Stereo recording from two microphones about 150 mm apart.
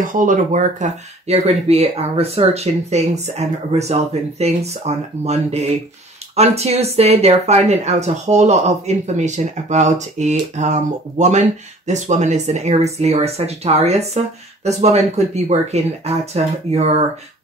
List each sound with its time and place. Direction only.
0.0 s speech: 60° right (ahead or behind); by 16.5 s 45° right (ahead or behind)